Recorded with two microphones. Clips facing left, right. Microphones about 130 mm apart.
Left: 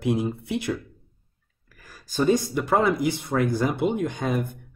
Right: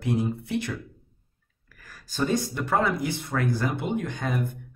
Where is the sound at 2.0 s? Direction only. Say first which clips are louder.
Left 4 dB; 10° left (ahead or behind).